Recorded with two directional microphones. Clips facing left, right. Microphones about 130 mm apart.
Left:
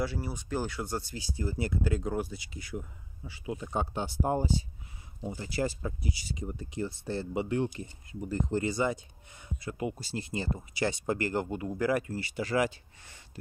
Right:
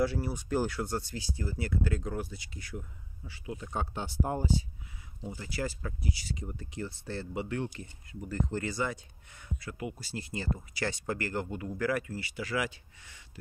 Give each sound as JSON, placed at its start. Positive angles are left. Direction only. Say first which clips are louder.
{"t": 0.0, "sound": "speech", "louder": "right 3 dB", "side_deg": 0}
{"t": 1.1, "sound": "speech", "louder": "left 2 dB", "side_deg": 20}
{"t": 12.0, "sound": "speech", "louder": "left 4 dB", "side_deg": 30}